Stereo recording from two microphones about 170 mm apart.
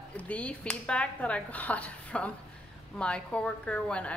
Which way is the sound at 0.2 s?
10° left (ahead or behind).